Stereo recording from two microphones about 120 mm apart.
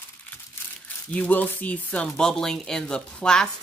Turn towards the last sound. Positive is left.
turn(degrees=5)  # may be behind; listen again after turning